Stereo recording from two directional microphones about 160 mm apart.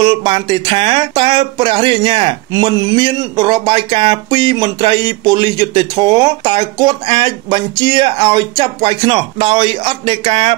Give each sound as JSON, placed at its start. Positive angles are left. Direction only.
{"t": 0.0, "sound": "speech", "side_deg": -30}